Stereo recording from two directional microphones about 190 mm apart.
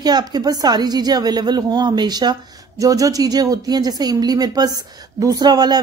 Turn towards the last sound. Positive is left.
turn(degrees=-20)  # may be behind; listen again after turning